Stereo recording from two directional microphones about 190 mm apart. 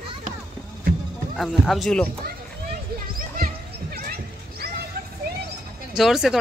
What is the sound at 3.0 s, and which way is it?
Basketball bounce, 50° right (ahead or behind).